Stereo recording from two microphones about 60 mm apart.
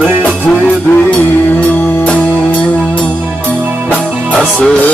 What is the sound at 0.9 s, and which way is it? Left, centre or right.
Music, left.